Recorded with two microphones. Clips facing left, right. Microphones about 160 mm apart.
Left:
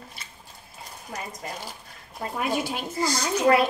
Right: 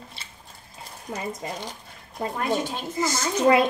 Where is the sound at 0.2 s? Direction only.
30° right (ahead or behind).